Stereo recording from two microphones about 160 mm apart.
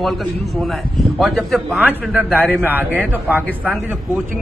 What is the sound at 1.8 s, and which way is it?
A man's voice, 10° right (ahead or behind).